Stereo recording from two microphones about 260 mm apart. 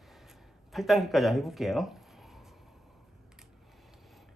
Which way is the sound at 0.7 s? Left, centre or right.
Centre.